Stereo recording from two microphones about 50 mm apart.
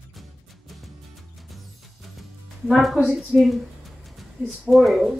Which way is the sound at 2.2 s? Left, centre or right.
Centre.